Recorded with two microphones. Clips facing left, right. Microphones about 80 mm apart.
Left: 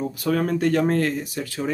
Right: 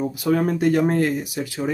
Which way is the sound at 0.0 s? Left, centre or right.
Centre.